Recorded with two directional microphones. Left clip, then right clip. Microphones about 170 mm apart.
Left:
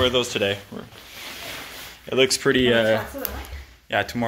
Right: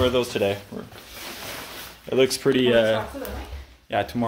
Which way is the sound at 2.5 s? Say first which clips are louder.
Right 1 dB; 35° left (ahead or behind).